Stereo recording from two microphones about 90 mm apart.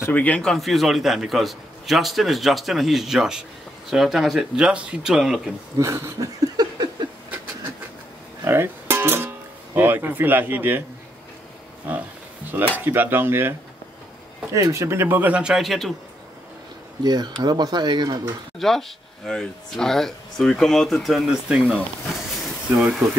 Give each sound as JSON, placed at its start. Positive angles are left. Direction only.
{"t": 0.1, "sound": "a man's voice", "side_deg": 15}
{"t": 0.5, "sound": "speech", "side_deg": 0}
{"t": 5.8, "sound": "a sound", "side_deg": -30}
{"t": 8.5, "sound": "music", "side_deg": -25}
{"t": 9.8, "sound": "speech", "side_deg": -20}
{"t": 12.7, "sound": "speech", "side_deg": -20}
{"t": 17.0, "sound": "speech", "side_deg": -50}
{"t": 18.6, "sound": "speech", "side_deg": 5}
{"t": 22.8, "sound": "speech", "side_deg": 0}